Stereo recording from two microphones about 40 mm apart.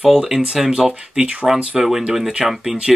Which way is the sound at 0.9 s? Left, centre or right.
Right.